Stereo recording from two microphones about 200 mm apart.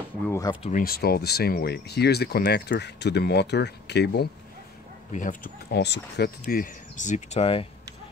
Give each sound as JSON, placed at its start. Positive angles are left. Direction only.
{"t": 0.2, "sound": "speech", "side_deg": 15}
{"t": 0.6, "sound": "speech", "side_deg": 40}
{"t": 5.1, "sound": "speech", "side_deg": 40}
{"t": 6.4, "sound": "speech", "side_deg": 40}